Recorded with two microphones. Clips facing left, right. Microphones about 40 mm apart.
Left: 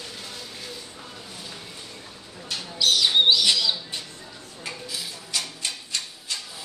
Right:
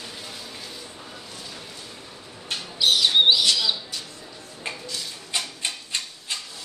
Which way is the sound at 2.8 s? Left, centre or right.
Centre.